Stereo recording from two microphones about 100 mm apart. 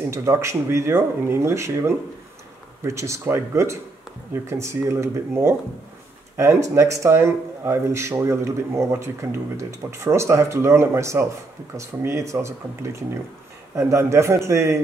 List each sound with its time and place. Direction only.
0.1 s a man's voice: 30° right (ahead or behind)